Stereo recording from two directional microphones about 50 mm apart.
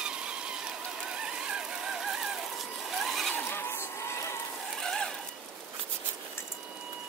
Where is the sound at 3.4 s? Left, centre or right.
Left.